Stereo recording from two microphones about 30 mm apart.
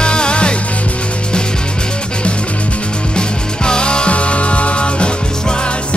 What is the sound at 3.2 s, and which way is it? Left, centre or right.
Music, left.